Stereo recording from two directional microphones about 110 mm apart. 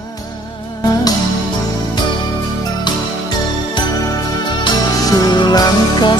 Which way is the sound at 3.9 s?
30° left (ahead or behind).